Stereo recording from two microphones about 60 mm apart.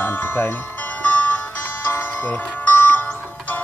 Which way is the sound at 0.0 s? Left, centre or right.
Left.